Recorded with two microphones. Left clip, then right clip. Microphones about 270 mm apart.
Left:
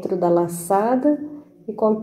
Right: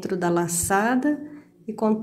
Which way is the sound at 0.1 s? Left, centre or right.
Right.